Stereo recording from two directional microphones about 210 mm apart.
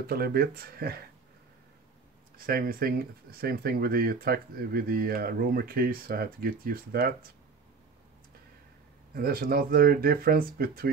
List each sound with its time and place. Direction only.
0.0 s speech: 45° right (ahead or behind)
2.3 s speech: 45° right (ahead or behind)
9.1 s speech: 45° right (ahead or behind)